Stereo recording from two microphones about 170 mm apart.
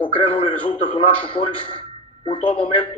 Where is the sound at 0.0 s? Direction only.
35° left (ahead or behind).